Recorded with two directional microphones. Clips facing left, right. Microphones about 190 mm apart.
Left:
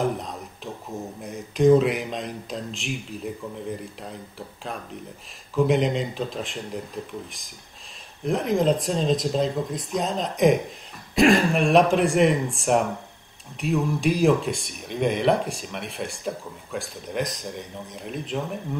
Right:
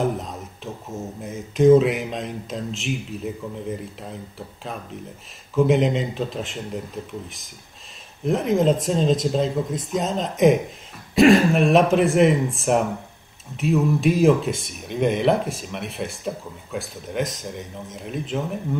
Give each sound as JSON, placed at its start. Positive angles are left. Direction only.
{"t": 0.0, "sound": "speech", "side_deg": 0}